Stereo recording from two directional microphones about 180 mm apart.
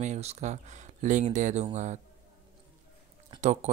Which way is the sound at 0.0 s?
40° right (ahead or behind).